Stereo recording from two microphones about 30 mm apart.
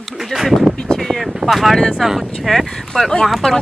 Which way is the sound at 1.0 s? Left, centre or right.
Centre.